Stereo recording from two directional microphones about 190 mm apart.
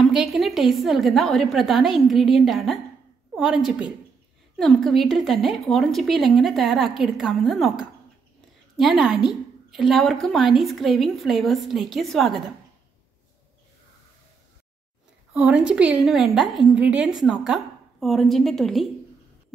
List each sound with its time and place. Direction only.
0.0 s a woman's voice: centre (ahead or behind)
15.3 s a woman's voice: 5° right (ahead or behind)